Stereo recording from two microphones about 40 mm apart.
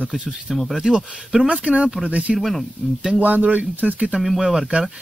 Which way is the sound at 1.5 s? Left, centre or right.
Right.